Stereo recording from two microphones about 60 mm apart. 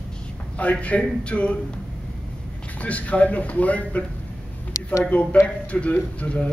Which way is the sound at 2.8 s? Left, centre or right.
Left.